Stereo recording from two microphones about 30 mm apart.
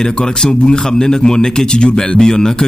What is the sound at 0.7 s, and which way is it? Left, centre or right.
Speech, left.